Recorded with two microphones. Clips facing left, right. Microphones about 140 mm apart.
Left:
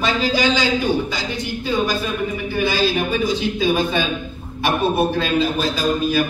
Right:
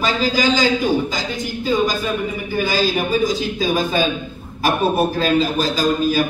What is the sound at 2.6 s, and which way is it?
A man's voice, 40° right (ahead or behind).